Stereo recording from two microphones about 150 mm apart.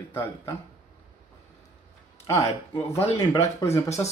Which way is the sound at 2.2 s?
20° left (ahead or behind).